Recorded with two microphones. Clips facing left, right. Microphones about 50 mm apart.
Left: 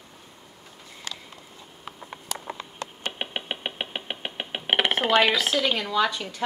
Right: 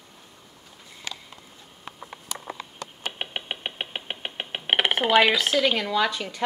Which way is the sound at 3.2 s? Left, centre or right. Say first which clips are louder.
Left 1 dB; centre.